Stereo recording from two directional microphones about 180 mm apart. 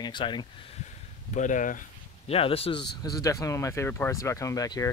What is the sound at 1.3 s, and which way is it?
Speech, 45° left (ahead or behind).